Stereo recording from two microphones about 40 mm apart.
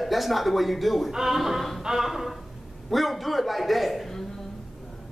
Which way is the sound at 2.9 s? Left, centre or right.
Centre.